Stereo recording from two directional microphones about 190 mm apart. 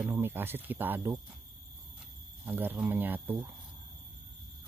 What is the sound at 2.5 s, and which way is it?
Speech, 10° right (ahead or behind).